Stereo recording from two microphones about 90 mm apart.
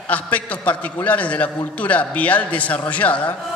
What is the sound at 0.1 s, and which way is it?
Speech, 15° left (ahead or behind).